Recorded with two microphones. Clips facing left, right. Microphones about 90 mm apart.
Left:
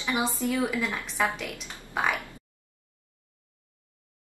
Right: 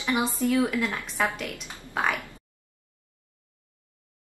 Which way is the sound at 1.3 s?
Centre (ahead or behind).